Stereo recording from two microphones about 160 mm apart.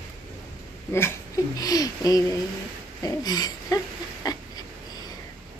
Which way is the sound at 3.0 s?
25° left (ahead or behind).